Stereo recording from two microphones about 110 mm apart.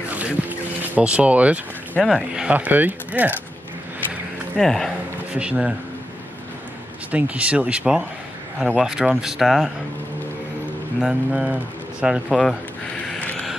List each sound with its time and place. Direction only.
0.9 s speech: 10° right (ahead or behind)
2.0 s speech: 5° left (ahead or behind)
2.3 s speech: 10° right (ahead or behind)
4.6 s speech: 5° left (ahead or behind)
5.3 s speech: 10° right (ahead or behind)
7.1 s speech: 10° right (ahead or behind)
11.0 s speech: 5° right (ahead or behind)
13.0 s a sound: 10° left (ahead or behind)